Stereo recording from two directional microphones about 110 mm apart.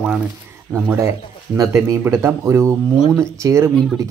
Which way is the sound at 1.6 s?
25° right (ahead or behind).